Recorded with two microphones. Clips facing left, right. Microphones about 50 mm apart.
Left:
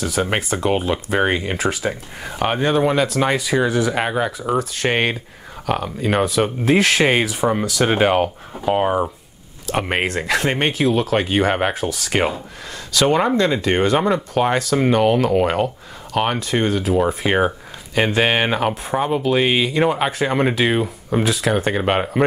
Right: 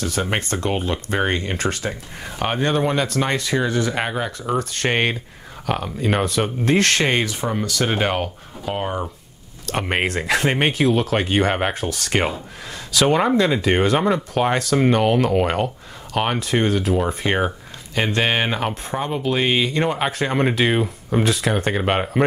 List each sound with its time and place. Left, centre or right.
0.0 s speech: centre
7.4 s speech: centre
9.7 s speech: centre